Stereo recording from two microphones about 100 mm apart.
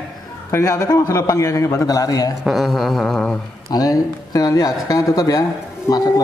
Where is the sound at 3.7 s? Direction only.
40° left (ahead or behind).